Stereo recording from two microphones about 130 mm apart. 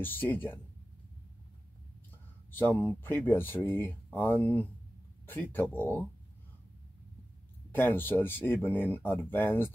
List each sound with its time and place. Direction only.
0.0 s speech: 15° left (ahead or behind)
2.5 s speech: 15° left (ahead or behind)
7.7 s speech: 15° left (ahead or behind)